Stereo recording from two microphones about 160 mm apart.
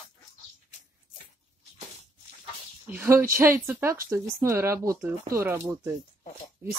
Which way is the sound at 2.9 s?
15° right (ahead or behind).